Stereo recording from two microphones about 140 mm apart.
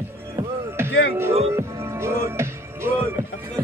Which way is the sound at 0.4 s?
15° right (ahead or behind).